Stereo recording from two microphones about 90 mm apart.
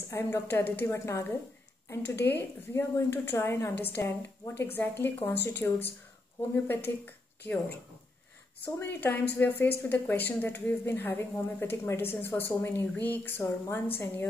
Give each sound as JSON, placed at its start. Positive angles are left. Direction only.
{"t": 0.1, "sound": "a woman's voice", "side_deg": 25}
{"t": 8.7, "sound": "a woman's voice", "side_deg": 20}